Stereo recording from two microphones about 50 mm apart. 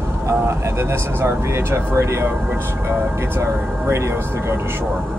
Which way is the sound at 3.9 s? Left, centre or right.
Right.